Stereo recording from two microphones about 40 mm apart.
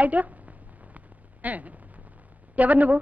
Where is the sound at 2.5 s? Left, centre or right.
Right.